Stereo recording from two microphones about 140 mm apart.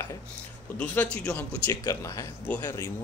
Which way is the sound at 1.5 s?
25° left (ahead or behind).